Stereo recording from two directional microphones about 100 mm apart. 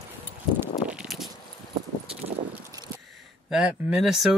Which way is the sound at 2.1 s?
80° right.